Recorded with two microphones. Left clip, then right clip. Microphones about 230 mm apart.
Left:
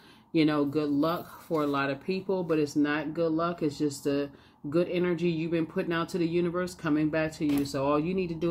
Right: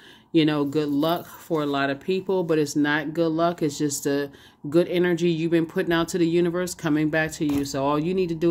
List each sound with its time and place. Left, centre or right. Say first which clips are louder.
0.3 s speech: right 4 dB; right